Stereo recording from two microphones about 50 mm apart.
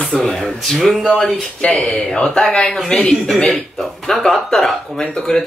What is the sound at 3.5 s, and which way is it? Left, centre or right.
Speech, centre.